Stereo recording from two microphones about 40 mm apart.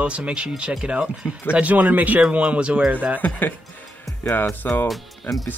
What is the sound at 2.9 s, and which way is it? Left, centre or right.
Speech, right.